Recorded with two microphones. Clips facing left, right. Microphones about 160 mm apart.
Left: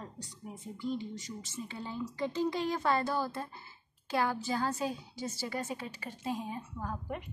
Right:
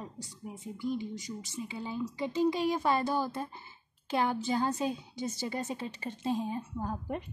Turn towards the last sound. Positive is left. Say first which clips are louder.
# right 3 dB
turn(degrees=-30)  # may be behind; listen again after turning